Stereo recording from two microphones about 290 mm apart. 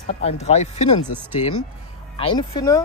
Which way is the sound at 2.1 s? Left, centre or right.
Centre.